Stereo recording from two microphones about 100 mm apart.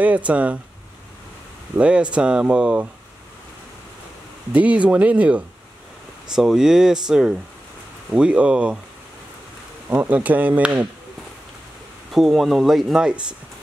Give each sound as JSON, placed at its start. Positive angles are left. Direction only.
{"t": 0.0, "sound": "speech", "side_deg": -15}
{"t": 1.8, "sound": "speech", "side_deg": -10}
{"t": 4.5, "sound": "speech", "side_deg": -15}
{"t": 9.8, "sound": "speech", "side_deg": -15}
{"t": 12.1, "sound": "speech", "side_deg": 0}